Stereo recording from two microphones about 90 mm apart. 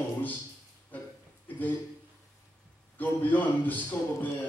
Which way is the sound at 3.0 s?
20° left (ahead or behind).